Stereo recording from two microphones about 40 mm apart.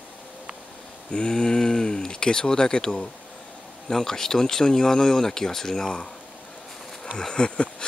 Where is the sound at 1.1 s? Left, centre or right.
Left.